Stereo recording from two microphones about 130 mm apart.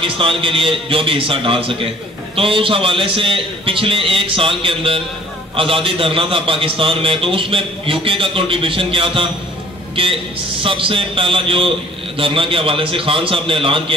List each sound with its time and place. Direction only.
0.0 s a man's voice: 45° right (ahead or behind)